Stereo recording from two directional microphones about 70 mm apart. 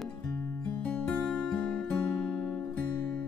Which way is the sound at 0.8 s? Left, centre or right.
Left.